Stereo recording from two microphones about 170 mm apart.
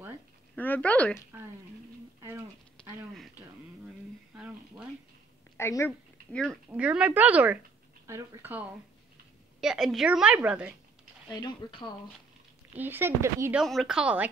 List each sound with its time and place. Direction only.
0.6 s speech: 10° left (ahead or behind)
4.4 s a sound: 5° right (ahead or behind)
5.6 s speech: 15° left (ahead or behind)
6.3 s a woman's voice: centre (ahead or behind)
11.2 s speech: 25° left (ahead or behind)
12.7 s speech: 10° right (ahead or behind)
13.6 s a woman's voice: centre (ahead or behind)